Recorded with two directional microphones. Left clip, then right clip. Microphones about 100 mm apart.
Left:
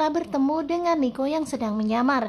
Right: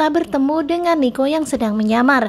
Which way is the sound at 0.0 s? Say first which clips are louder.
Right 7 dB; 35° right (ahead or behind).